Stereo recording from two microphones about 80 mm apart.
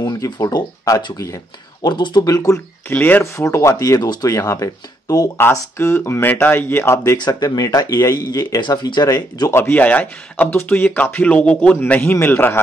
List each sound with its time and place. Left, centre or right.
0.0 s speech: left
2.2 s speech: left
2.9 s speech: left
3.3 s speech: left
5.4 s speech: left
7.2 s speech: left
9.5 s speech: left